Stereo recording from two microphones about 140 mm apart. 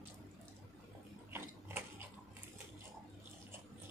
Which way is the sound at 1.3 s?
15° right (ahead or behind).